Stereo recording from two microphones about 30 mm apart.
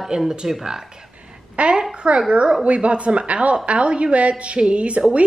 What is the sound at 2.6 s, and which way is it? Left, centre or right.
Speech, right.